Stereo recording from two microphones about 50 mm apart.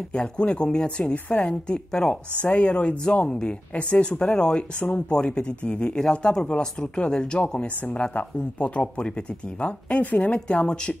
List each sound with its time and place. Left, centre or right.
0.1 s speech: left